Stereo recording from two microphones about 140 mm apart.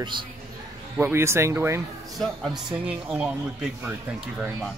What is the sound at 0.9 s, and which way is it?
Speech, 15° right (ahead or behind).